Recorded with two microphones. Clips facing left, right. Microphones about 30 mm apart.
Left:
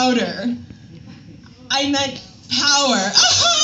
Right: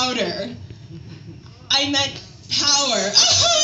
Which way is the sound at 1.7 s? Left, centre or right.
Right.